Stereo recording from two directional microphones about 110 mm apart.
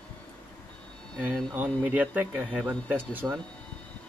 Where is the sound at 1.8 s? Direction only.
15° right (ahead or behind).